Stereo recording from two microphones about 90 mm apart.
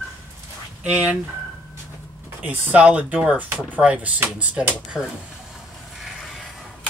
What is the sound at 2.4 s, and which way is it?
Speech, 15° right (ahead or behind).